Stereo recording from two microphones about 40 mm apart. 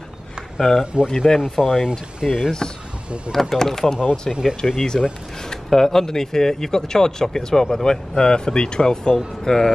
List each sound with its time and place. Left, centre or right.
0.6 s speech: centre
1.6 s speech: centre
3.3 s speech: centre
4.3 s speech: centre
4.7 s speech: centre